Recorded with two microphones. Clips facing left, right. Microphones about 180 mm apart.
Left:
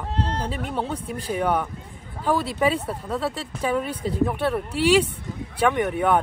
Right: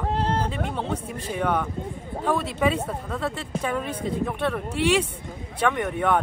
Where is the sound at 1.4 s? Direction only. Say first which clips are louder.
Even; 10° left (ahead or behind).